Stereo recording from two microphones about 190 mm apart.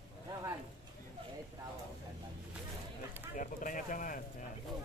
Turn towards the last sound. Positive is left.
turn(degrees=45)  # may be behind; listen again after turning